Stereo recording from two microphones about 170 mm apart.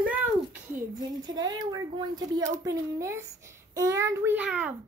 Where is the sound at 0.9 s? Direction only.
20° right (ahead or behind).